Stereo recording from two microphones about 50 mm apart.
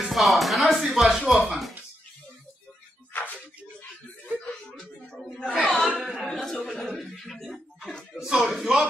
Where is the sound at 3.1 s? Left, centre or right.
Left.